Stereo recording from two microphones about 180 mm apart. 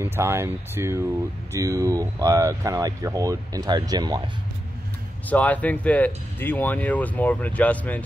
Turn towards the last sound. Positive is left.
turn(degrees=10)  # may be behind; listen again after turning